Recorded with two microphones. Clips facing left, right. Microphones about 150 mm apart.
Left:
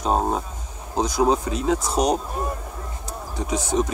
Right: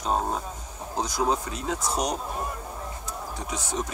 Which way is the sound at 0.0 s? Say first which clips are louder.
Left 5 dB; 25° left (ahead or behind).